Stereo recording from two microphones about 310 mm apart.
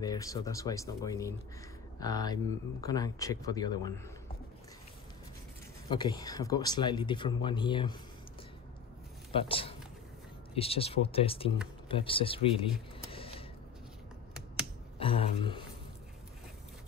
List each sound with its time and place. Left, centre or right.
0.0 s speech: centre
5.9 s speech: centre
9.3 s speech: centre
13.0 s a sound: centre
15.0 s speech: centre